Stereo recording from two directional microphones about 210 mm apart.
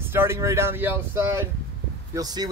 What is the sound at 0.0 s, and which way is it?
Speech, 10° right (ahead or behind).